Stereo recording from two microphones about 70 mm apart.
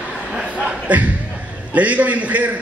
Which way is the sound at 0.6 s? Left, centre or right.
Centre.